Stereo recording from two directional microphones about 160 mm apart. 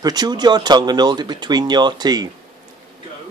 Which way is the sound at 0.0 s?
25° right (ahead or behind).